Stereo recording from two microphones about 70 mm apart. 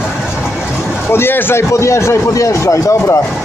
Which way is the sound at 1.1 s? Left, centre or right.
Left.